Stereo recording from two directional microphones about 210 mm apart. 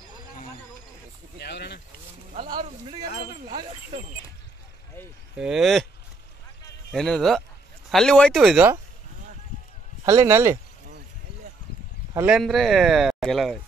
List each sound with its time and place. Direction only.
1.4 s speech: 50° left (ahead or behind)
2.3 s speech: 25° right (ahead or behind)
5.4 s speech: centre (ahead or behind)
6.9 s speech: centre (ahead or behind)
10.0 s speech: 15° right (ahead or behind)
12.1 s speech: 10° right (ahead or behind)